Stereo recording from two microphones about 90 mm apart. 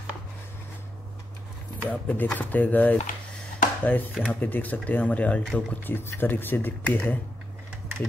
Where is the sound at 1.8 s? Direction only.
15° left (ahead or behind).